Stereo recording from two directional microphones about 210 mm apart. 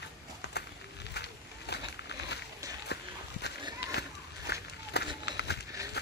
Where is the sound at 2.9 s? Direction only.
55° left (ahead or behind).